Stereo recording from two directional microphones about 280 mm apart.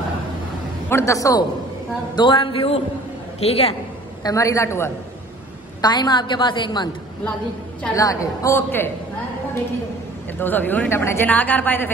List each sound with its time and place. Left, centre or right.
0.8 s a woman's voice: centre
10.4 s a woman's voice: centre